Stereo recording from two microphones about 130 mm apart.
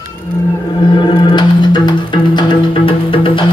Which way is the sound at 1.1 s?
35° left (ahead or behind).